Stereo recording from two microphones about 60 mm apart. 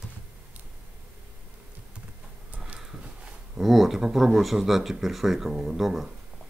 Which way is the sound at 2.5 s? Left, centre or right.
Centre.